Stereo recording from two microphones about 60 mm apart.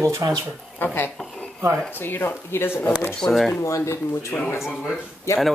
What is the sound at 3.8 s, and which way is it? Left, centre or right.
Speech, left.